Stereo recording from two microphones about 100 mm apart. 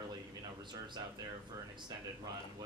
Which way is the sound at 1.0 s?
40° right (ahead or behind).